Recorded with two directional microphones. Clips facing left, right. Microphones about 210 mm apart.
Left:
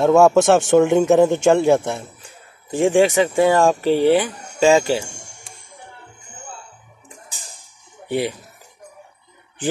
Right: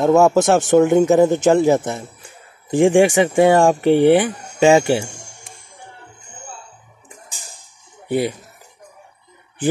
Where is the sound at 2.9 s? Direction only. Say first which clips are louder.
Left 2 dB; 15° right (ahead or behind).